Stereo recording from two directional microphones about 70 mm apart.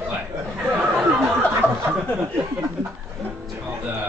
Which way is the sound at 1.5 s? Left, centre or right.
Right.